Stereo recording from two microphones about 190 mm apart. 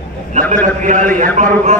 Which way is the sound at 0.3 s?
40° right (ahead or behind).